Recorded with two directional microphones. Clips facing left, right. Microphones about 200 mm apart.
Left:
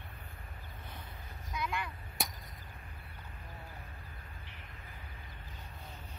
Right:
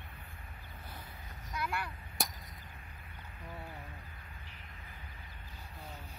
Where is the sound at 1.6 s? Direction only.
5° right (ahead or behind).